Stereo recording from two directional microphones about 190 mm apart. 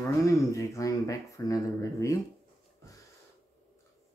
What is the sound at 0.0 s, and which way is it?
Speech, 15° left (ahead or behind).